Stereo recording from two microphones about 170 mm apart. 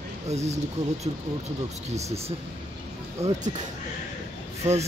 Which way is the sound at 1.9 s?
40° right (ahead or behind).